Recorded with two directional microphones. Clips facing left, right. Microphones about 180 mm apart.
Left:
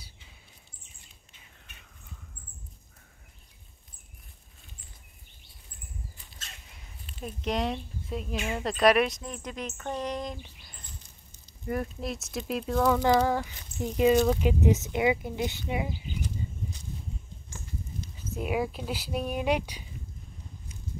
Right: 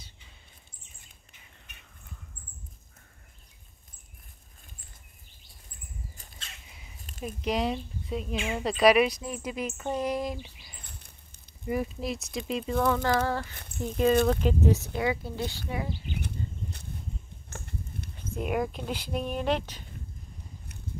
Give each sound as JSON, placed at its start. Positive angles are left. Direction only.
{"t": 7.2, "sound": "speech", "side_deg": -5}
{"t": 10.8, "sound": "rodents", "side_deg": -60}
{"t": 11.6, "sound": "speech", "side_deg": -5}
{"t": 13.0, "sound": "speech", "side_deg": 15}
{"t": 17.5, "sound": "a sound", "side_deg": -60}
{"t": 18.3, "sound": "speech", "side_deg": 5}